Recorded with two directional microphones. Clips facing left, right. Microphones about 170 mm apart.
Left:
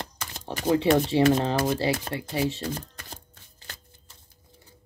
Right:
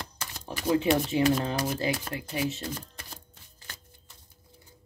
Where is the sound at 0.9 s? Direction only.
35° left (ahead or behind).